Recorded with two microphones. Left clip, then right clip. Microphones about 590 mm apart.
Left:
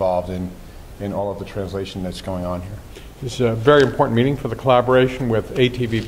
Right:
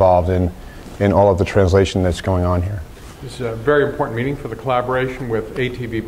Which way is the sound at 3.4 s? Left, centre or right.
Left.